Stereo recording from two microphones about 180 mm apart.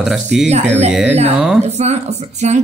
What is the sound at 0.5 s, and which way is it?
Speech, 35° right (ahead or behind).